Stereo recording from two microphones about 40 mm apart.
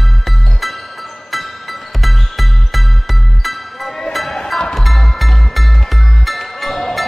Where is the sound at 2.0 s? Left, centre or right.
Centre.